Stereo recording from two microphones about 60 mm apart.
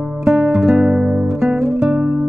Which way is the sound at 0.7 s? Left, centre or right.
Centre.